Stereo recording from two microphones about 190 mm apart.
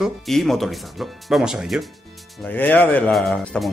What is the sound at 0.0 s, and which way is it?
Speech, centre (ahead or behind).